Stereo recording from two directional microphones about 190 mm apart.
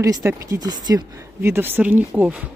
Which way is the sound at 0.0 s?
15° right (ahead or behind).